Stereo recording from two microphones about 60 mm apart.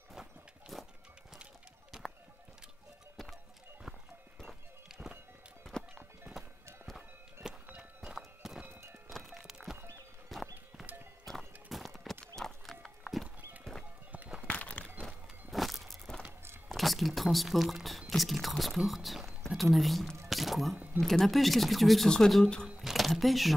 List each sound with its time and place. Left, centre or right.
0.1 s walk: centre
4.4 s music: centre
5.7 s music: centre
7.7 s music: centre
10.3 s clip-clop: centre
12.8 s horse: centre
14.5 s a sound: left
15.0 s a sound: centre
18.1 s speech: centre
20.2 s squish: centre
20.7 s speech: right
21.0 s speech: centre
22.8 s a sound: centre